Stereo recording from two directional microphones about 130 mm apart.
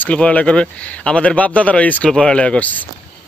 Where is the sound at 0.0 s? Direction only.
10° left (ahead or behind).